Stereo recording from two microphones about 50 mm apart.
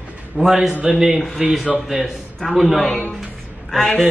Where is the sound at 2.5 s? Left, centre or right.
Centre.